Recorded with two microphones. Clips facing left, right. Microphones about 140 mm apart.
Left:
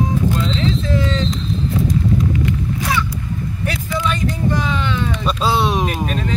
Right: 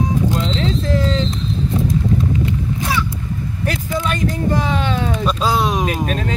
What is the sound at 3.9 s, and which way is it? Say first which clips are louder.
Speech: even; 40° right (ahead or behind).